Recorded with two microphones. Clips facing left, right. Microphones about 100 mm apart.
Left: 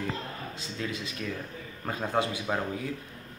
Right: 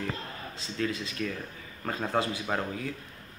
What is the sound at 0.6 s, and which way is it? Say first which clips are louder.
Speech: right 5 dB; 20° left (ahead or behind).